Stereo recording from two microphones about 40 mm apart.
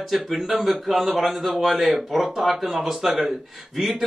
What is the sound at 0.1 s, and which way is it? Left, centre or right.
A man's voice, centre.